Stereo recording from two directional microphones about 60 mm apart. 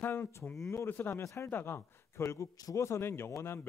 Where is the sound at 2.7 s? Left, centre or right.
Left.